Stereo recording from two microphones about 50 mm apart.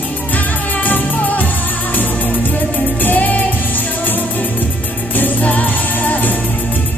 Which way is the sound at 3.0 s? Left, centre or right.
Left.